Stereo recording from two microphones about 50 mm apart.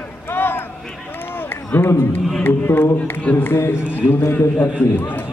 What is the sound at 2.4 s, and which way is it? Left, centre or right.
A man's voice, left.